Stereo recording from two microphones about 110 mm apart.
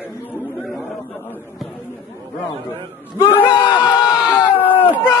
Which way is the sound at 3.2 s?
50° left (ahead or behind).